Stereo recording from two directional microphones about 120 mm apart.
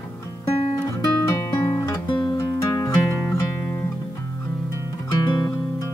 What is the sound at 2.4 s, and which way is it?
Music, 25° left (ahead or behind).